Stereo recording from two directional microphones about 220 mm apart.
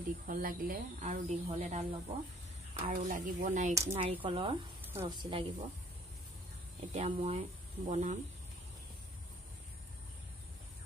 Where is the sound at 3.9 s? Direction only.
25° right (ahead or behind).